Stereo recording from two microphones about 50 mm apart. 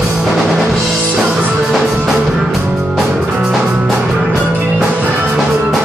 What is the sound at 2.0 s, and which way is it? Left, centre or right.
Music, centre.